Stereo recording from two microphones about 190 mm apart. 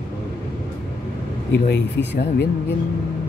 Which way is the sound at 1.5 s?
65° left (ahead or behind).